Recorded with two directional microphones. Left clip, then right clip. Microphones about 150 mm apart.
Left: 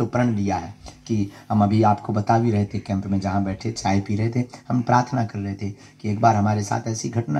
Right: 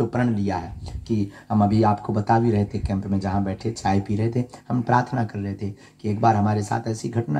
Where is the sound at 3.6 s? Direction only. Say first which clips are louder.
Right 2 dB; 20° right (ahead or behind).